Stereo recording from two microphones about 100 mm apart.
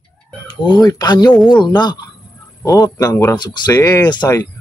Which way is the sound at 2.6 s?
40° left (ahead or behind).